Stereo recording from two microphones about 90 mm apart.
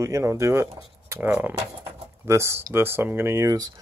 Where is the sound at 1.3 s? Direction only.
15° right (ahead or behind).